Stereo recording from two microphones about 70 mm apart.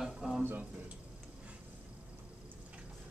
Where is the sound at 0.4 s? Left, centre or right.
Right.